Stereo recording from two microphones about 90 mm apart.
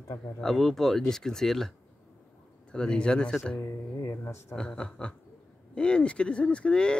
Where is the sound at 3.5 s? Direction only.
35° left (ahead or behind).